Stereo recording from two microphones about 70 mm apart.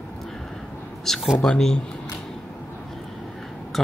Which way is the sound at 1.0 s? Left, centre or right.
Centre.